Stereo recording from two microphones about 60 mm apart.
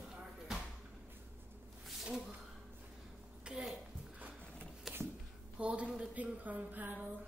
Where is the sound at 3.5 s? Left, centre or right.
Centre.